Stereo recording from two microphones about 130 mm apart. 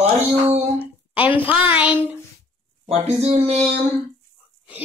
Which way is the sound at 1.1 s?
10° right (ahead or behind).